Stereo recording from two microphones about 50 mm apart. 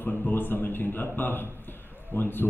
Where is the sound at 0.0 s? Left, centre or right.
Left.